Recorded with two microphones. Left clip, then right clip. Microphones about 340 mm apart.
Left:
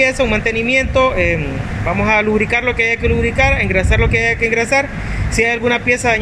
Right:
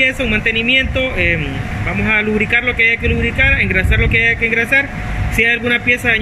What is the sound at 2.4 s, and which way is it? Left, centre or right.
Speech, centre.